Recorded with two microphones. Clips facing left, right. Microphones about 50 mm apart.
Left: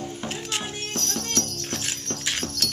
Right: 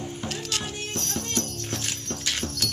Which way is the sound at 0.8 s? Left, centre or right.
Centre.